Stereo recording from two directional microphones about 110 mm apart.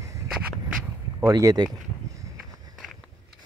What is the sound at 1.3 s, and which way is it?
Speech, 35° right (ahead or behind).